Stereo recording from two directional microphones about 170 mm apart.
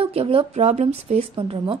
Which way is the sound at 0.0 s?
30° right (ahead or behind).